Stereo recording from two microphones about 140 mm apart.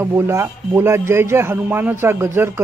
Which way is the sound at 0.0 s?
15° right (ahead or behind).